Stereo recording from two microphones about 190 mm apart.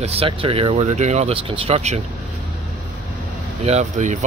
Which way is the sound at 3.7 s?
40° right (ahead or behind).